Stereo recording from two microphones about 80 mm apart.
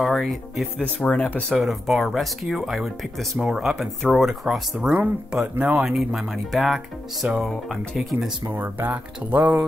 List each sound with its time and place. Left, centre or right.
0.0 s speech: centre
0.9 s speech: centre
1.6 s speech: centre
5.9 s speech: centre
8.5 s speech: right